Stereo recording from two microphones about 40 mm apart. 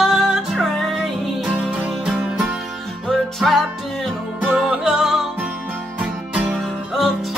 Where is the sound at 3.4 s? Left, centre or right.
Centre.